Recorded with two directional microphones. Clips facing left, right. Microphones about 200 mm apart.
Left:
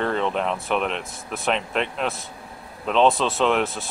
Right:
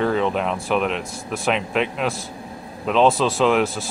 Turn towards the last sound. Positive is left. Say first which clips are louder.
# right 3 dB
turn(degrees=0)  # may be behind; listen again after turning